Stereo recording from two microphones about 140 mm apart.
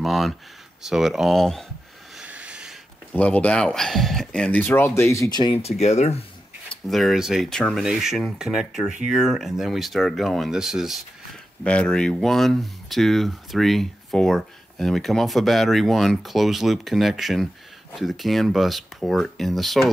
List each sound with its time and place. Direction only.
0.0 s a sound: centre (ahead or behind)
0.8 s speech: centre (ahead or behind)
2.1 s a sound: 10° right (ahead or behind)
3.2 s speech: 10° left (ahead or behind)
5.2 s speech: 30° left (ahead or behind)
5.6 s speech: 50° left (ahead or behind)
6.7 s speech: centre (ahead or behind)
11.6 s speech: 10° left (ahead or behind)